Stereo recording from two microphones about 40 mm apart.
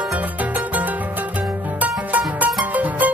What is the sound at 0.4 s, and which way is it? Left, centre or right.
Music, right.